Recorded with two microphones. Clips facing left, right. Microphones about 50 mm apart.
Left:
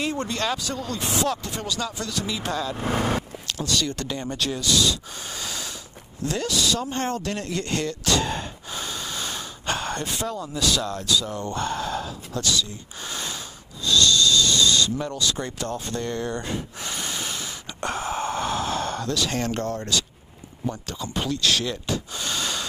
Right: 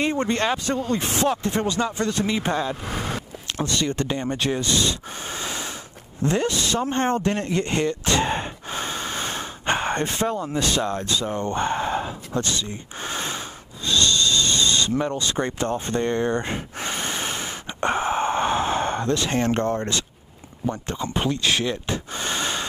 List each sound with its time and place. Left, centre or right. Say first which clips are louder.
0.0 s speech: right 4 dB; right
2.8 s speech: left 4 dB; left
3.5 s speech: right 3 dB; right
13.8 s a sound: left 1 dB; right
20.7 s speech: right 4 dB; right